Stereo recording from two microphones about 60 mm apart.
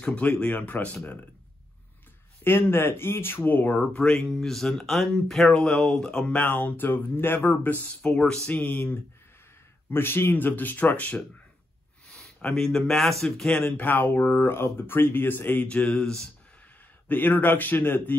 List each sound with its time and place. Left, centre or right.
0.0 s speech: left
2.4 s speech: left; by 6.2 s centre
6.2 s speech: left
8.1 s speech: centre
8.5 s speech: left
12.4 s speech: centre
13.7 s speech: left
15.9 s speech: centre
17.1 s speech: left